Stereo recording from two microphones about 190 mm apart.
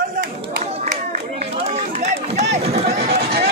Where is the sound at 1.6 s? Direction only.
35° right (ahead or behind).